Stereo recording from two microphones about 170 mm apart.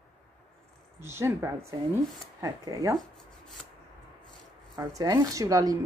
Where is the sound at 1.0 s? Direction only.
15° right (ahead or behind).